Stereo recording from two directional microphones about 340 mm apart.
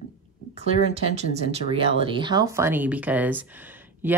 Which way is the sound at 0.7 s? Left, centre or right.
Centre.